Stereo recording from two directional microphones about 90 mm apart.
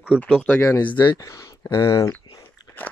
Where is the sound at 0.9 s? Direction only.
60° left (ahead or behind).